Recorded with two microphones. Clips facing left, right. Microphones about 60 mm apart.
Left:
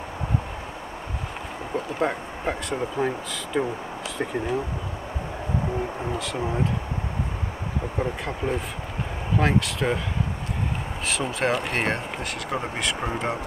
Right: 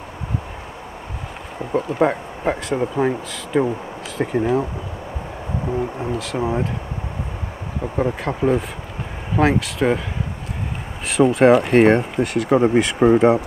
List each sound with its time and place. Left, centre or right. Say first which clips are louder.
1.7 s speech: right 7 dB; centre
5.9 s speech: right 4 dB; centre
8.0 s speech: right 9 dB; centre
11.1 s speech: right 12 dB; centre